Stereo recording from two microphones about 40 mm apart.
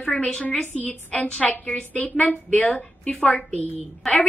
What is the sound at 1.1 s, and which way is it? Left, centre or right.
Speech, centre.